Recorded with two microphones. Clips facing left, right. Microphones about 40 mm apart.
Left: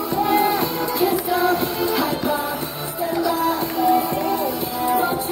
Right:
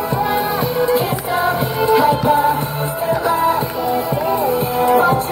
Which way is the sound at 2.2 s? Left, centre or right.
Right.